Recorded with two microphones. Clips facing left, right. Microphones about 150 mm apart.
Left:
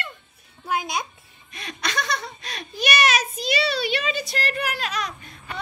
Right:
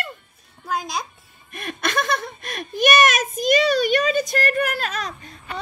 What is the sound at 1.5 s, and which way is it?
A child's voice, 50° right (ahead or behind).